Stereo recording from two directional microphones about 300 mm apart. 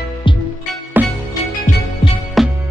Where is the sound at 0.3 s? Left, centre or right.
Centre.